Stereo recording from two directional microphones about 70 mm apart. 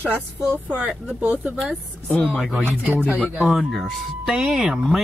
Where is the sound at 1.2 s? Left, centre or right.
Right.